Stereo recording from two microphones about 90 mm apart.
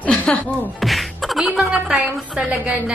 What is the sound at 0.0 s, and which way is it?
Music, 15° left (ahead or behind).